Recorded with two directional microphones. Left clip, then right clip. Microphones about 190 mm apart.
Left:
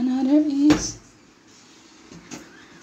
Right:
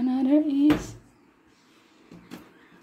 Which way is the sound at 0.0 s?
15° right (ahead or behind).